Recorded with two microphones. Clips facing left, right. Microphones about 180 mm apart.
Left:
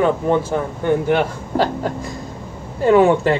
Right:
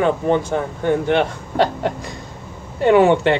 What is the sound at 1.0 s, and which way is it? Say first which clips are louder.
A man's voice: even; centre (ahead or behind).